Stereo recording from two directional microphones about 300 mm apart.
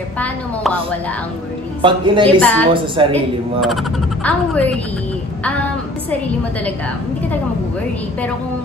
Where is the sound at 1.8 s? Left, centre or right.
Centre.